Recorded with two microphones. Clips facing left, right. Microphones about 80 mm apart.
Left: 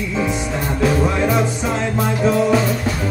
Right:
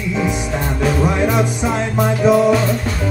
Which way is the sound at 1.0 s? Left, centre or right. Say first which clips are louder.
Right 1 dB; centre.